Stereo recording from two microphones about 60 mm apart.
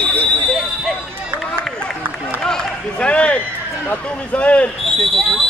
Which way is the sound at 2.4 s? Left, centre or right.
Centre.